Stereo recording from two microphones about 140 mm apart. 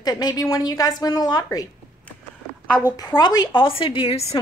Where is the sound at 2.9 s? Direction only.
30° left (ahead or behind).